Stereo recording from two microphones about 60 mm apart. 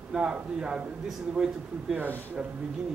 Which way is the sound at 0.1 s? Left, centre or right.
Centre.